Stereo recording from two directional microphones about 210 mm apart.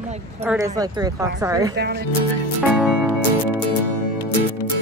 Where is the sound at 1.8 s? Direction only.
50° right (ahead or behind).